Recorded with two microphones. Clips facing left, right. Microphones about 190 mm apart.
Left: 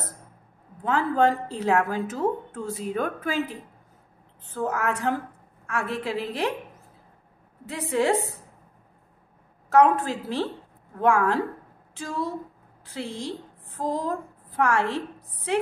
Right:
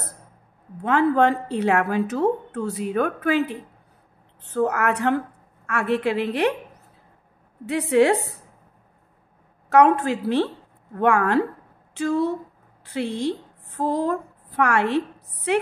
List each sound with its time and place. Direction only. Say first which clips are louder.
0.8 s a woman's voice: right 4 dB; 65° right (ahead or behind)
7.9 s a woman's voice: right 5 dB; 65° right (ahead or behind)
9.7 s a woman's voice: right 3 dB; 70° right (ahead or behind)